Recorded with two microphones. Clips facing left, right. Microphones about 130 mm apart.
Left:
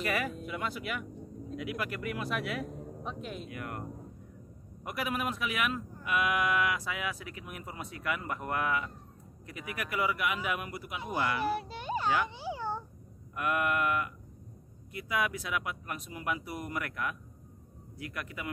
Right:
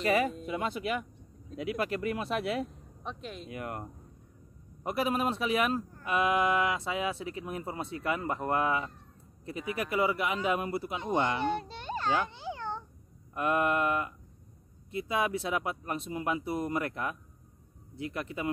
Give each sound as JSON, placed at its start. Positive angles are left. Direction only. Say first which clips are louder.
{"t": 0.0, "sound": "speech", "louder": "right 5 dB", "side_deg": -25}
{"t": 2.7, "sound": "speech", "louder": "left 3 dB", "side_deg": 5}
{"t": 3.4, "sound": "speech", "louder": "right 2 dB", "side_deg": -25}
{"t": 4.8, "sound": "speech", "louder": "right 5 dB", "side_deg": -30}
{"t": 11.5, "sound": "a child's voice", "louder": "left 1 dB", "side_deg": 5}
{"t": 12.4, "sound": "a sound", "louder": "left 1 dB", "side_deg": 10}
{"t": 13.3, "sound": "speech", "louder": "right 3 dB", "side_deg": -25}